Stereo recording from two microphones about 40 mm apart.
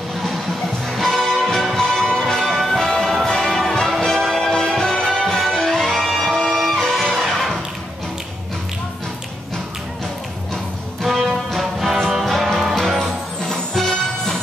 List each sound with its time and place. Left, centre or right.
0.9 s music: centre
5.0 s music: centre
11.1 s music: centre
13.4 s music: centre